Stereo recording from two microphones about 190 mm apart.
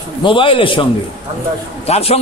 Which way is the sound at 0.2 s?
25° left (ahead or behind).